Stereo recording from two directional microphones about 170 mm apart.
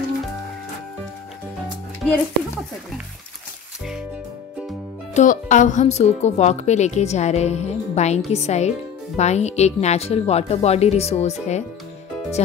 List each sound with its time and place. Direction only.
5.1 s speech: 50° left (ahead or behind)